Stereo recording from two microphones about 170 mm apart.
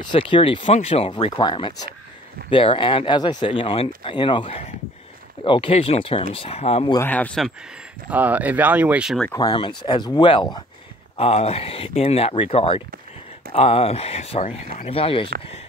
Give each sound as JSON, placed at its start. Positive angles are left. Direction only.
{"t": 0.0, "sound": "speech", "side_deg": 30}
{"t": 7.0, "sound": "speech", "side_deg": 10}
{"t": 8.1, "sound": "speech", "side_deg": -10}
{"t": 9.3, "sound": "speech", "side_deg": 25}